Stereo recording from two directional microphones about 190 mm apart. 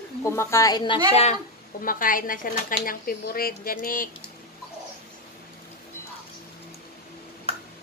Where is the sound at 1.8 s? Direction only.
45° left (ahead or behind).